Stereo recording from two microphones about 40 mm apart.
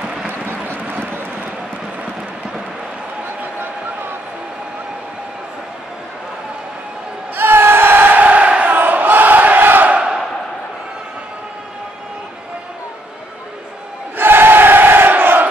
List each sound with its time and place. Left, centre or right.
7.3 s crowd: right
8.2 s crowd: right
8.6 s battle cry: right
14.1 s crowd: right